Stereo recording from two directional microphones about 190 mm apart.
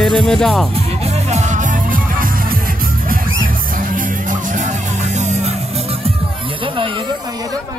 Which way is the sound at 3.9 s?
40° right (ahead or behind).